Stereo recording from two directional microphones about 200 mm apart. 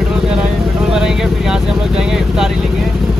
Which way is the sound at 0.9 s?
Centre (ahead or behind).